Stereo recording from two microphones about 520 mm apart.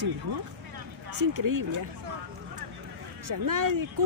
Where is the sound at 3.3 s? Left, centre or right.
Right.